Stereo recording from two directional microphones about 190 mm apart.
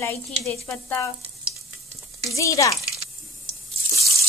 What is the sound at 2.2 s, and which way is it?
Speech, 15° left (ahead or behind).